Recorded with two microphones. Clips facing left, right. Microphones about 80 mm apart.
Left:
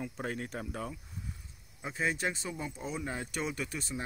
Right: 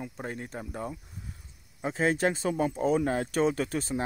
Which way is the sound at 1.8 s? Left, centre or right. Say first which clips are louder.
Right 7 dB; right.